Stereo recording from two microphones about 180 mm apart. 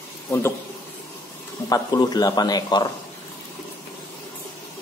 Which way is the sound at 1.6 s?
20° left (ahead or behind).